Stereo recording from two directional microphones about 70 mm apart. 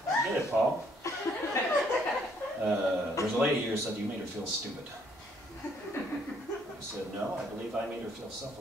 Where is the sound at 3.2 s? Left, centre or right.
Left.